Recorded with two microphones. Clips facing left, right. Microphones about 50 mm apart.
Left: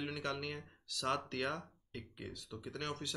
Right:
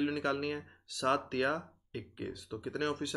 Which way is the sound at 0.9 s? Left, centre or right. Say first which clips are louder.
Right 6 dB; centre.